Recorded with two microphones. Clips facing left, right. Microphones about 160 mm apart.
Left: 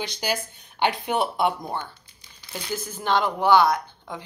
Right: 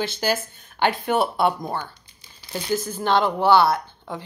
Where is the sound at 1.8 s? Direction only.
10° right (ahead or behind).